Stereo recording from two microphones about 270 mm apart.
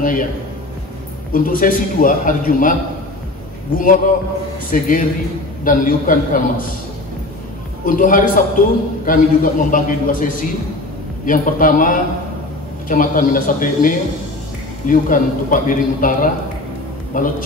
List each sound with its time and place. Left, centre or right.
1.3 s a man's voice: left
3.7 s a man's voice: left
7.8 s a man's voice: left